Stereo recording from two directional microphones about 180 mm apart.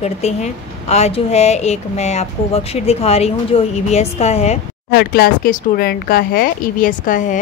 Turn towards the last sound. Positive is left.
turn(degrees=45)  # may be behind; listen again after turning